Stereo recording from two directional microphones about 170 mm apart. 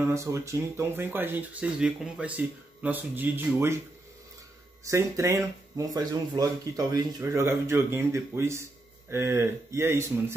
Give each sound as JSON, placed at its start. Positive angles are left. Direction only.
{"t": 0.0, "sound": "speech", "side_deg": -15}
{"t": 4.8, "sound": "speech", "side_deg": -15}